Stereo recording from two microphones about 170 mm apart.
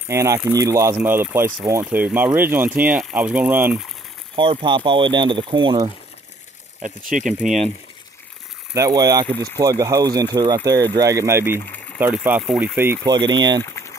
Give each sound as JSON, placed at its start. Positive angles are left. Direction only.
{"t": 0.1, "sound": "speech", "side_deg": -15}
{"t": 4.4, "sound": "speech", "side_deg": -30}
{"t": 6.8, "sound": "speech", "side_deg": -50}
{"t": 8.7, "sound": "speech", "side_deg": -20}
{"t": 11.5, "sound": "speech", "side_deg": 10}
{"t": 12.0, "sound": "speech", "side_deg": -10}
{"t": 13.0, "sound": "speech", "side_deg": -25}
{"t": 13.6, "sound": "boiling", "side_deg": 15}